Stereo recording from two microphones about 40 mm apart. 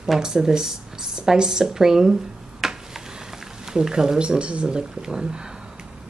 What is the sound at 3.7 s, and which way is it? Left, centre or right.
Speech, centre.